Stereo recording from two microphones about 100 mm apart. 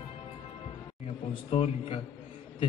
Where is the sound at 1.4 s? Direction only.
70° left (ahead or behind).